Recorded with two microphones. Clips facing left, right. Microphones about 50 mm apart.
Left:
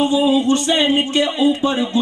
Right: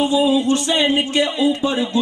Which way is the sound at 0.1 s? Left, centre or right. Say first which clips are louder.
Left 1 dB; centre.